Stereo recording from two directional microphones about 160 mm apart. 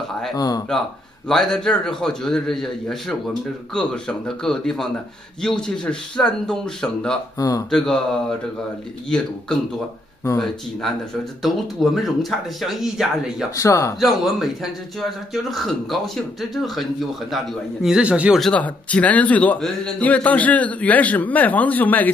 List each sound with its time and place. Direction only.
0.4 s a man's voice: 25° left (ahead or behind)
1.3 s a man's voice: 5° left (ahead or behind)
7.3 s a man's voice: 20° left (ahead or behind)
7.7 s a man's voice: 5° left (ahead or behind)
10.4 s a man's voice: centre (ahead or behind)
13.6 s a man's voice: 20° left (ahead or behind)
13.9 s a man's voice: centre (ahead or behind)
18.5 s a man's voice: 10° left (ahead or behind)